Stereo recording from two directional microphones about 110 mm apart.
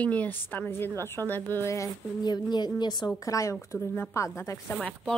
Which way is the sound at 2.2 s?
40° left (ahead or behind).